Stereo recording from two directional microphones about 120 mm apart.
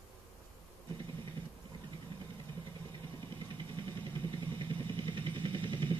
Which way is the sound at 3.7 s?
45° right (ahead or behind).